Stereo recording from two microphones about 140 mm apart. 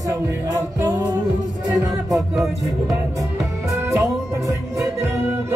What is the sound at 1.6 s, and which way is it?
Music, 5° right (ahead or behind).